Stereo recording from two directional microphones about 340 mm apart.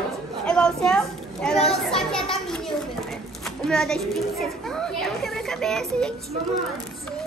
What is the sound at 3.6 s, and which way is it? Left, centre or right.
Speech, centre.